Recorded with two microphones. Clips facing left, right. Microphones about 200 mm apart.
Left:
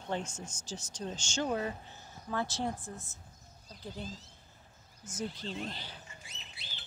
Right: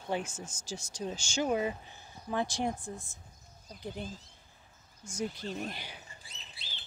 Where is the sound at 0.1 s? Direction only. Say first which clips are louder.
Right 2 dB; 5° right (ahead or behind).